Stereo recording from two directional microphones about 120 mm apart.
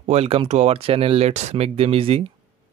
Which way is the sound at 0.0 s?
60° right (ahead or behind).